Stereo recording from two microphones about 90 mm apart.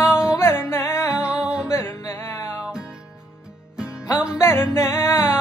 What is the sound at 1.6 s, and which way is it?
Music, 30° left (ahead or behind).